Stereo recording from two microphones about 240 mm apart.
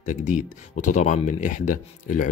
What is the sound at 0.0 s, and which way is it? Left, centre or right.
Speech, left.